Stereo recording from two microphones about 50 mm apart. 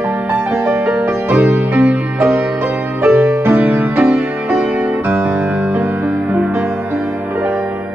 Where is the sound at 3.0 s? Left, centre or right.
Right.